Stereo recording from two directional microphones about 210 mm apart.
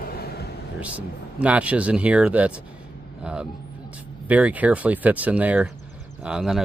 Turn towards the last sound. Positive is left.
turn(degrees=-5)  # may be behind; listen again after turning